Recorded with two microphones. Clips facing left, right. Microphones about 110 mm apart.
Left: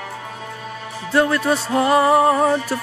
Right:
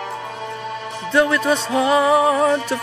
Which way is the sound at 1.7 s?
40° left (ahead or behind).